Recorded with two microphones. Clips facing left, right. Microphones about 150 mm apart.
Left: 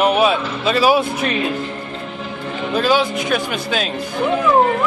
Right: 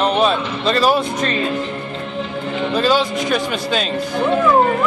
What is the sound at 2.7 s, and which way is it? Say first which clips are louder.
Speech: left 1 dB; centre (ahead or behind).